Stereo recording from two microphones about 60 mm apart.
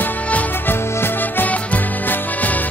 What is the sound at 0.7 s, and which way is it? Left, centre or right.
Music, left.